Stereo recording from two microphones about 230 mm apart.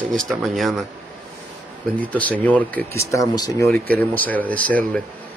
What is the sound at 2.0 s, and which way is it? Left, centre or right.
Speech, centre.